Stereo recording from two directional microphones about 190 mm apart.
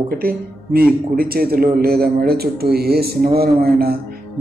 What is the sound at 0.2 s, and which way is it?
A man's voice, 50° right (ahead or behind).